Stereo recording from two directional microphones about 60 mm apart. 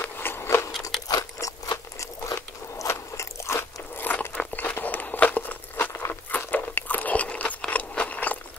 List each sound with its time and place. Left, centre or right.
0.0 s biting: left
1.0 s crunch: left
2.0 s biting: left
2.9 s crunch: left
4.6 s walk: left
6.3 s biting: left